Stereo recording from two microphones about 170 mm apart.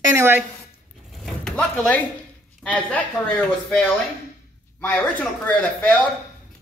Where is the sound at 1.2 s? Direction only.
Centre (ahead or behind).